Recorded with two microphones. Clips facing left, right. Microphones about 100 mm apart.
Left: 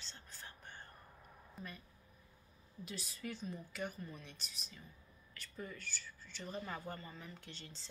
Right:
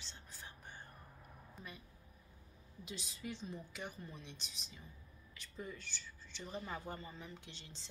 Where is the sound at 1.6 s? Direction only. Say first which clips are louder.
Left 3 dB; centre (ahead or behind).